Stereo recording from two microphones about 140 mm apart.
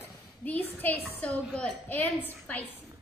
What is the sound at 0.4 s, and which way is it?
A woman's voice, 10° left (ahead or behind).